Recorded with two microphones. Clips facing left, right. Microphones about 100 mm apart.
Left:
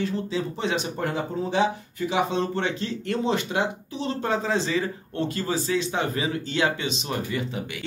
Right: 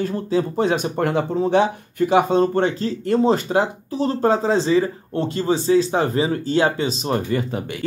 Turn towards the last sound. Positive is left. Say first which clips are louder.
# right 7 dB
turn(degrees=-45)  # may be behind; listen again after turning